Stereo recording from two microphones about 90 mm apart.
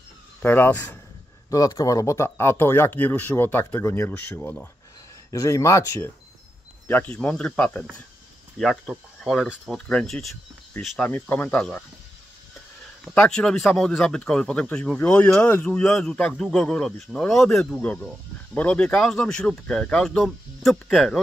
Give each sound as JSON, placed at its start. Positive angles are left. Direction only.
{"t": 0.4, "sound": "speech", "side_deg": 20}
{"t": 1.5, "sound": "speech", "side_deg": 40}
{"t": 5.3, "sound": "speech", "side_deg": 35}
{"t": 6.9, "sound": "speech", "side_deg": 15}
{"t": 8.5, "sound": "speech", "side_deg": 0}
{"t": 11.0, "sound": "speech", "side_deg": 15}
{"t": 13.1, "sound": "speech", "side_deg": 10}